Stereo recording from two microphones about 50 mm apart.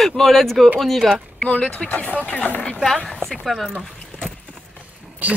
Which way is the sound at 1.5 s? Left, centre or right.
Left.